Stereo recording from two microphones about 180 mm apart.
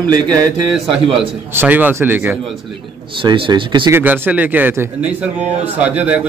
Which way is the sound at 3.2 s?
30° right (ahead or behind).